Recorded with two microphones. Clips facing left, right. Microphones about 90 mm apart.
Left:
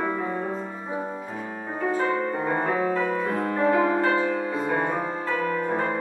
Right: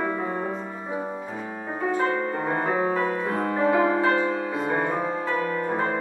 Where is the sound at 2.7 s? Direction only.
25° right (ahead or behind).